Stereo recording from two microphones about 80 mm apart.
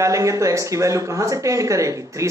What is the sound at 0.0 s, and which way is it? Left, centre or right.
Speech, right.